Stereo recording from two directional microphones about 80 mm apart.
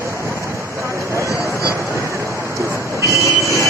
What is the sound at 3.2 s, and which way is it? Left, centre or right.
Vehicle, left.